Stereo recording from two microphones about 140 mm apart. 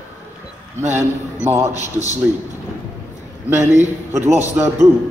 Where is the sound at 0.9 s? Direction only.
20° right (ahead or behind).